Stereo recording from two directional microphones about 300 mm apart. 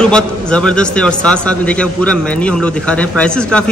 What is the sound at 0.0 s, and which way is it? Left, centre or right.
A man's voice, centre.